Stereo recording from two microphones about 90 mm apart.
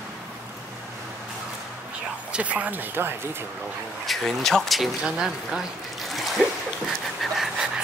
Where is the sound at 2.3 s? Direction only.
15° right (ahead or behind).